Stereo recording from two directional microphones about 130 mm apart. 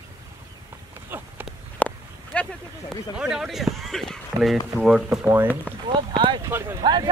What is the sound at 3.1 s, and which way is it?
Speech, 5° right (ahead or behind).